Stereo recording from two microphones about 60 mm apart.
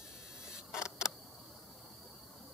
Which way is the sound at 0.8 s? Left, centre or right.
Centre.